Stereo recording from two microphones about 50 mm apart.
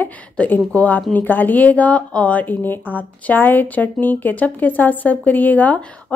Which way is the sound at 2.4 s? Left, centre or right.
Left.